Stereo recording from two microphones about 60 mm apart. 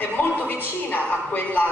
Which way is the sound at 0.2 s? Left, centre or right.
Left.